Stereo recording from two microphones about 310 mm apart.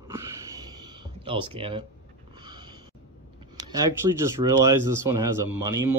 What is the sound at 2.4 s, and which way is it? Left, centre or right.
Snort, centre.